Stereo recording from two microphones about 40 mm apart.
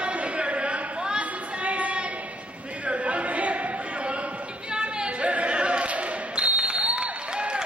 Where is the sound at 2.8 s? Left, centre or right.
Right.